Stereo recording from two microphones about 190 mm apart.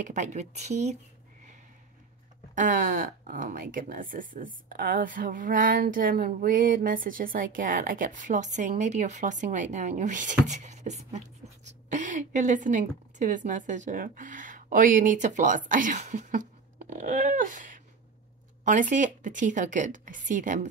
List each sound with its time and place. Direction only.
0.0 s speech: 40° right (ahead or behind)
2.5 s a woman's voice: 45° right (ahead or behind)